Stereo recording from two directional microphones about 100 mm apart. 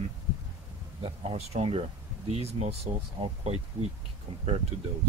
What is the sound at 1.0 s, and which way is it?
Speech, 90° right.